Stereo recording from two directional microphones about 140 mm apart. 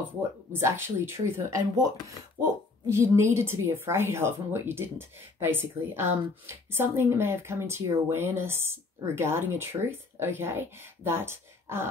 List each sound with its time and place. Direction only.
0.5 s a woman's voice: 15° right (ahead or behind)